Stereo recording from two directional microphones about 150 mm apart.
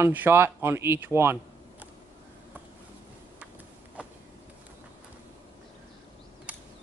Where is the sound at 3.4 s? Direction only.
10° right (ahead or behind).